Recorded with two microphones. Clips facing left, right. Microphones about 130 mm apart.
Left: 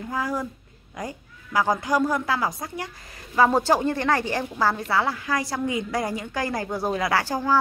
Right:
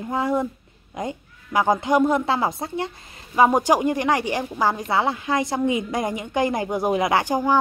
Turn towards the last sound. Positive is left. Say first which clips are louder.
# right 3 dB
turn(degrees=-15)  # may be behind; listen again after turning